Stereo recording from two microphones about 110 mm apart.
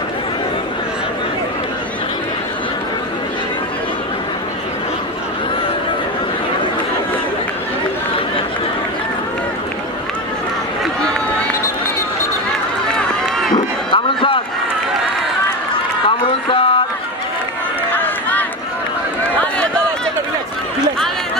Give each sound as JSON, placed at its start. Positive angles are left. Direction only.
{"t": 13.6, "sound": "a sound", "side_deg": 50}
{"t": 15.7, "sound": "run", "side_deg": 55}
{"t": 17.9, "sound": "run", "side_deg": 15}